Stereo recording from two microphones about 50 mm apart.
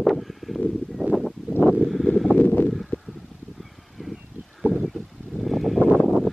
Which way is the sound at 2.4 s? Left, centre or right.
Left.